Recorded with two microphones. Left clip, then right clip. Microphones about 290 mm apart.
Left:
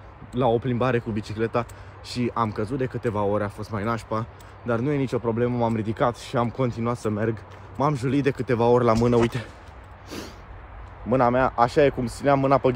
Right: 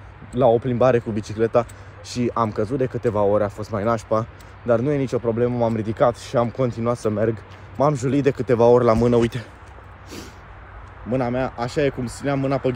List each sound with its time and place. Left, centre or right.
0.4 s speech: centre
11.1 s speech: left